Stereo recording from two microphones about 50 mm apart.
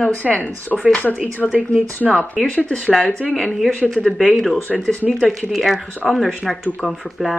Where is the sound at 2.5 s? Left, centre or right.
Left.